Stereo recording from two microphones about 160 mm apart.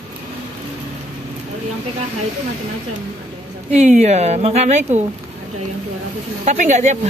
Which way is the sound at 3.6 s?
45° right (ahead or behind).